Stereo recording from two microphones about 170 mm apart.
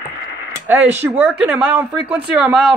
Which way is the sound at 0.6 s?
10° right (ahead or behind).